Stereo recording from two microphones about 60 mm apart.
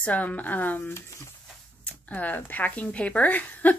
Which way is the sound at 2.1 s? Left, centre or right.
Left.